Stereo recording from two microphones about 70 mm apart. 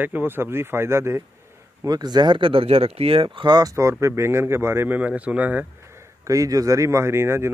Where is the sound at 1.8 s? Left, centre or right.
Right.